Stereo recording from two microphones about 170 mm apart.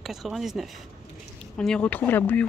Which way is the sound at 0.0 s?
Centre (ahead or behind).